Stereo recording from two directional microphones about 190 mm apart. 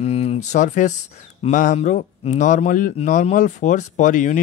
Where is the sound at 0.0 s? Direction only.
35° left (ahead or behind).